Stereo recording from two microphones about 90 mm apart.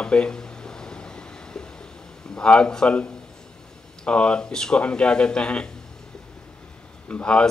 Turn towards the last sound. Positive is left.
turn(degrees=15)  # may be behind; listen again after turning